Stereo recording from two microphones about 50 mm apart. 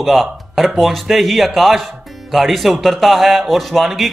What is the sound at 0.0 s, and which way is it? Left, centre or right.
A man's voice, centre.